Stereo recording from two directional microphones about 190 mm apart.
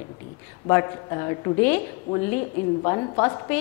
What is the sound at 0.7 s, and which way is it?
A woman's voice, 15° left (ahead or behind).